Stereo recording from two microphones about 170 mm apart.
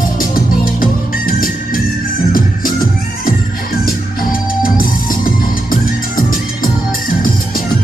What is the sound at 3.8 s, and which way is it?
Organ, 55° left (ahead or behind).